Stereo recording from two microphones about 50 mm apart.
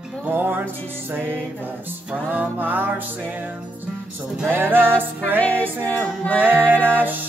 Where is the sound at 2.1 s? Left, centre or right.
Right.